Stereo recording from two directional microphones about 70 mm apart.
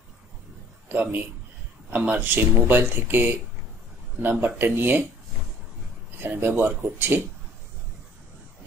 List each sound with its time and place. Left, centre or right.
0.8 s a man's voice: right
6.1 s speech: right